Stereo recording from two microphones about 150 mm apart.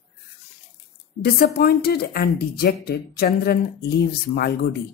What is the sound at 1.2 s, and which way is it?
Speech, 90° left.